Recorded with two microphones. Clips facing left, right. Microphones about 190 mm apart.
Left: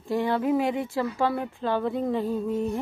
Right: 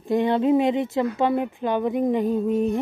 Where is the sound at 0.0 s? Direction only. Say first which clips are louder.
Right 5 dB; 20° right (ahead or behind).